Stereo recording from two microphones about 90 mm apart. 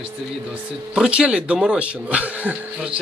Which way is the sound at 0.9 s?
10° right (ahead or behind).